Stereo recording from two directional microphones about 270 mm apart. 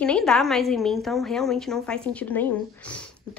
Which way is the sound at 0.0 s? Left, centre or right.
Centre.